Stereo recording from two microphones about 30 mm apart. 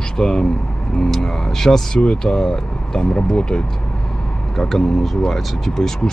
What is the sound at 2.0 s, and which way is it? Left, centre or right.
Speech, left.